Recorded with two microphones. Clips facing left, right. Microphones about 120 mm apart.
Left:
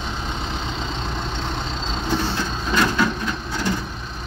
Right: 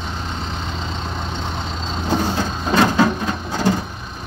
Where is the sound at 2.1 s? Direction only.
40° right (ahead or behind).